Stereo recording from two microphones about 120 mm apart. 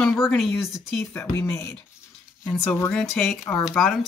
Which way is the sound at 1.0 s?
25° left (ahead or behind).